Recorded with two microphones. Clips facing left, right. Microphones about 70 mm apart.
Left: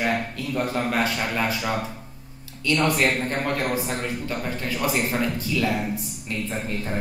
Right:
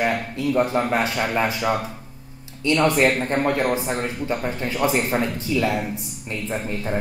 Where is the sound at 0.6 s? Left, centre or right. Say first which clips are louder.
Right 3 dB; right.